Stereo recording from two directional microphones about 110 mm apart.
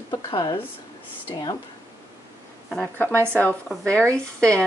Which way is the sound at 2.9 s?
15° left (ahead or behind).